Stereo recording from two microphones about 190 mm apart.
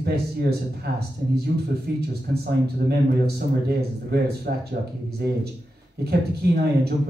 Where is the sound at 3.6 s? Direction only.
55° right (ahead or behind).